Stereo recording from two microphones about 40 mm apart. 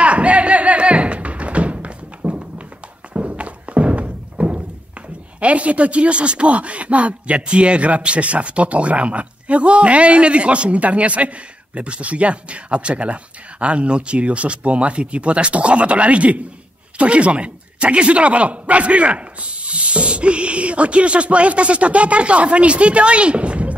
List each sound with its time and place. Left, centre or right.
0.0 s music: right
3.1 s thunk: right
5.4 s speech: right